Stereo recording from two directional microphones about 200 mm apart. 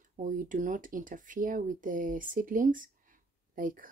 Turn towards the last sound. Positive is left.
turn(degrees=-45)  # may be behind; listen again after turning